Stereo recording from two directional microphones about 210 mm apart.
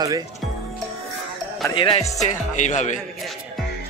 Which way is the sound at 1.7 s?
25° left (ahead or behind).